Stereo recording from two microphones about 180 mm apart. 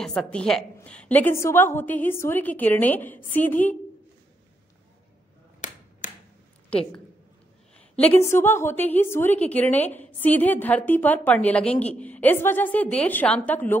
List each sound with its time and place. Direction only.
0.0 s a woman's voice: 5° left (ahead or behind)
5.6 s finger snapping: 45° left (ahead or behind)
7.9 s a woman's voice: 10° left (ahead or behind)